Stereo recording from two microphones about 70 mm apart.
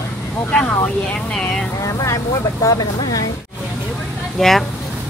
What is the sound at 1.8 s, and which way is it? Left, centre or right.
Speech, left.